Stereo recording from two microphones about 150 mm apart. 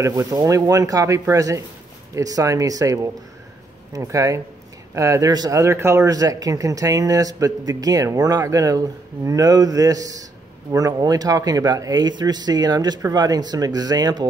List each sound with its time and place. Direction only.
0.0 s speech: 20° right (ahead or behind)